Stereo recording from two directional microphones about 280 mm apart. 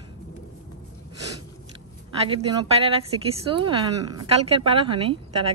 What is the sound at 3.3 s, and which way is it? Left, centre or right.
Speech, centre.